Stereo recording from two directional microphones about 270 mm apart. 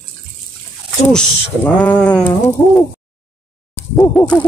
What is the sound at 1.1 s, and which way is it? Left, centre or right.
Bird, centre.